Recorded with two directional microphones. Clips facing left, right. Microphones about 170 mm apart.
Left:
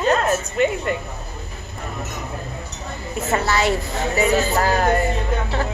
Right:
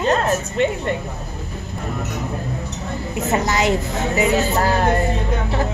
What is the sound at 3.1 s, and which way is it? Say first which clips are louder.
A woman's voice: right 1 dB; 20° right (ahead or behind).